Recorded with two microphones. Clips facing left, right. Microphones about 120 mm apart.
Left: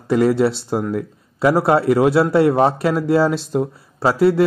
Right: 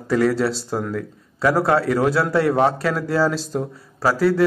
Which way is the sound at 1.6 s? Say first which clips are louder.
Left 4 dB; 25° left (ahead or behind).